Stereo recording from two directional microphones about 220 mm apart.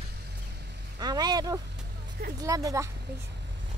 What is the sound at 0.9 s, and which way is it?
Speech, 20° right (ahead or behind).